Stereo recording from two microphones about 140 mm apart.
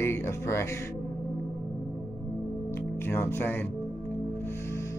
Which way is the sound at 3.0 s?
15° left (ahead or behind).